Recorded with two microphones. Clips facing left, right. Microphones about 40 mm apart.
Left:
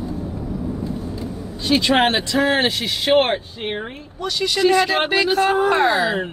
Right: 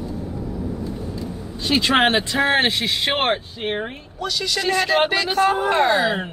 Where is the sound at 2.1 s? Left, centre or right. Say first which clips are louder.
Even; right.